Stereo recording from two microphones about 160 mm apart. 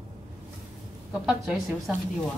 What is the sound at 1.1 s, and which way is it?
Speech, 10° right (ahead or behind).